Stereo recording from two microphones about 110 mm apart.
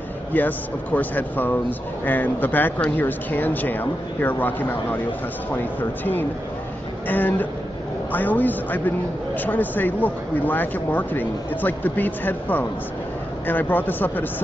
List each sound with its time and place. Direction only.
0.3 s speech: 15° left (ahead or behind)